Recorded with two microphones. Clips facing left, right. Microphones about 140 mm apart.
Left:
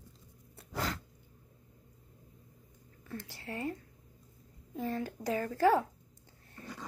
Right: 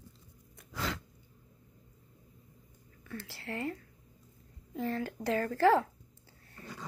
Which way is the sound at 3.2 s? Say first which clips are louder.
Right 1 dB; 15° left (ahead or behind).